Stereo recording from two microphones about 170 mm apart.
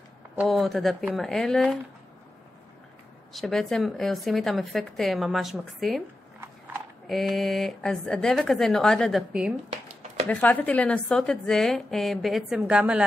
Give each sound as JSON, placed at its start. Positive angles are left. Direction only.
{"t": 0.4, "sound": "a woman's voice", "side_deg": 0}
{"t": 3.3, "sound": "a woman's voice", "side_deg": 0}
{"t": 7.1, "sound": "a woman's voice", "side_deg": 0}
{"t": 10.2, "sound": "a woman's voice", "side_deg": 10}